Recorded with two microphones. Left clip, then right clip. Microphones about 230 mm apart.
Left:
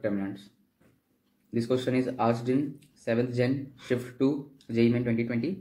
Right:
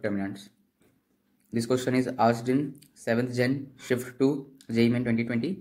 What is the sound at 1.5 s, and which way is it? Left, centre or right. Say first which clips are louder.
Speech: right 1 dB; right.